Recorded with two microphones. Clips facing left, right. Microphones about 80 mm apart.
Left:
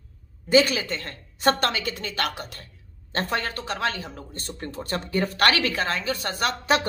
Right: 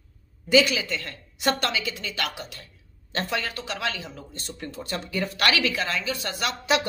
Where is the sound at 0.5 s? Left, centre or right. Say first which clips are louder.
Left 1 dB; left.